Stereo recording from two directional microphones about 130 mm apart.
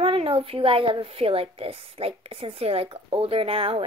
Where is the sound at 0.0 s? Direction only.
45° right (ahead or behind).